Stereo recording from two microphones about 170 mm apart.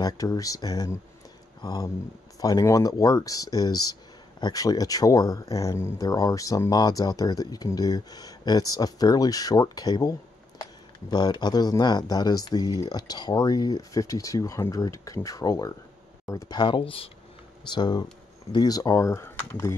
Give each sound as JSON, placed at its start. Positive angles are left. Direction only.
{"t": 0.0, "sound": "speech", "side_deg": 20}